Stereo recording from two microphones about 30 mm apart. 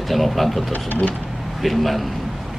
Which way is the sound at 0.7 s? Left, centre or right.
Left.